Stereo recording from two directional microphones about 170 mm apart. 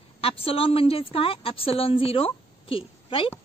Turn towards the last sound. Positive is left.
turn(degrees=35)  # may be behind; listen again after turning